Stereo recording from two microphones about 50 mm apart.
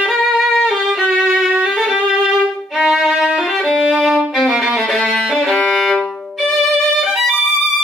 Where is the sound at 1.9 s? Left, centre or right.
Centre.